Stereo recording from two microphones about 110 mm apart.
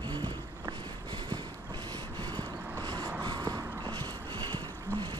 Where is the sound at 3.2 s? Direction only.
40° right (ahead or behind).